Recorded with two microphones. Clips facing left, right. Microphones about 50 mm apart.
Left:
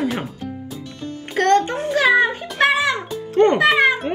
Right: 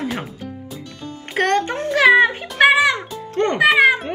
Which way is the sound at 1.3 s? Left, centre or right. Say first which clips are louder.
Left 3 dB; right.